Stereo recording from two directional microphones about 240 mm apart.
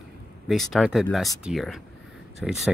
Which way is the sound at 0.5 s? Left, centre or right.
Centre.